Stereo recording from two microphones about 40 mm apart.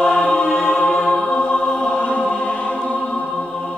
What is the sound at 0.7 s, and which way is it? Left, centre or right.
Music, left.